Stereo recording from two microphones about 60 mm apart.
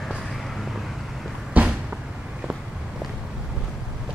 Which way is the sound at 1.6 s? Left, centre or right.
Right.